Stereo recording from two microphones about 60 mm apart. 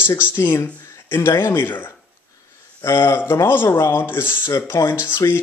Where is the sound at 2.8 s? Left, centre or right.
Left.